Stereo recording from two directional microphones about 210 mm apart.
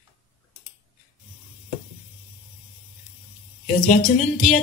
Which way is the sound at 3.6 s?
35° left (ahead or behind).